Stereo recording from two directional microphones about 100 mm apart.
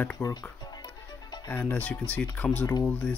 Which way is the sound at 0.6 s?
45° left (ahead or behind).